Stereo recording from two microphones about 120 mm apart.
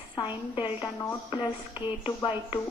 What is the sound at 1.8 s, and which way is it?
Speech, 40° left (ahead or behind).